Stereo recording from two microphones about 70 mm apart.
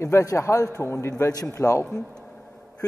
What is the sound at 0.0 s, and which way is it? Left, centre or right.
A man's voice, left.